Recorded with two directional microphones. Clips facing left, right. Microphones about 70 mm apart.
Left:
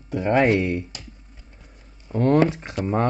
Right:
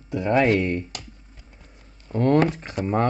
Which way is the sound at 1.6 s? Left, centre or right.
Centre.